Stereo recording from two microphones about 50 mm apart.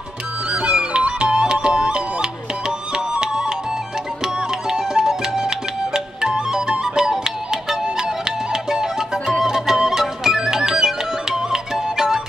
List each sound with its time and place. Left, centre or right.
0.5 s music: centre
4.6 s music: centre
8.6 s music: centre